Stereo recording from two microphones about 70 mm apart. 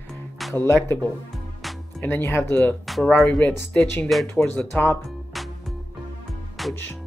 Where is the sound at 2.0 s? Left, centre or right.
Left.